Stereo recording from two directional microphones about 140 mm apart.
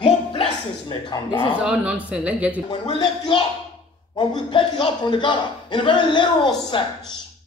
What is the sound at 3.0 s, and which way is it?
A man's voice, 30° left (ahead or behind).